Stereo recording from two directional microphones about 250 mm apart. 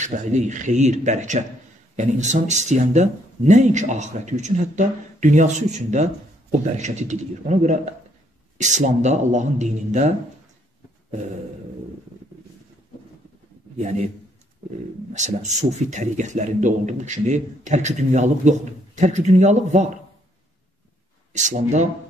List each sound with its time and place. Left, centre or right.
0.0 s speech: right
13.7 s speech: right
15.1 s speech: right
21.3 s speech: right